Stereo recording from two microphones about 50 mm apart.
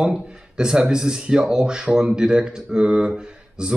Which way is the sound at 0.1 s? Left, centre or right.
Centre.